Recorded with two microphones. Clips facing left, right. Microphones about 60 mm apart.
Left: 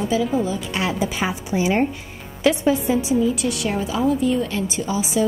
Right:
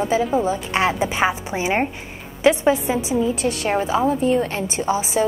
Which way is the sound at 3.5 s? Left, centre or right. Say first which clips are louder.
Right 3 dB; right.